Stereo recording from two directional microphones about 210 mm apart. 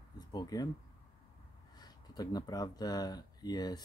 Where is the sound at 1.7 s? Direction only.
20° left (ahead or behind).